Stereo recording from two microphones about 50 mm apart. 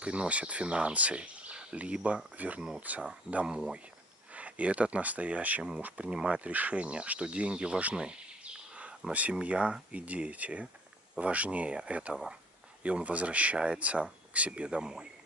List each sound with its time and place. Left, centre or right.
0.0 s speech: right
3.4 s speech: centre
6.0 s speech: centre
6.4 s speech: right; by 15.0 s centre